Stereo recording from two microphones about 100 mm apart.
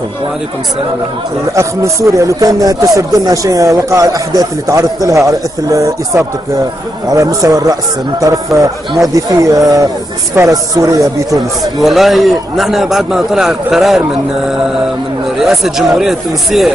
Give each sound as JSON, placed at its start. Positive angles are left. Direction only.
{"t": 1.5, "sound": "speech", "side_deg": -30}
{"t": 11.8, "sound": "a man's voice", "side_deg": 0}
{"t": 15.3, "sound": "a man's voice", "side_deg": -5}